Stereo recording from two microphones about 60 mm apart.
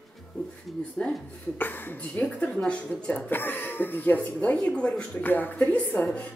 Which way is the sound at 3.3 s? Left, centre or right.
Left.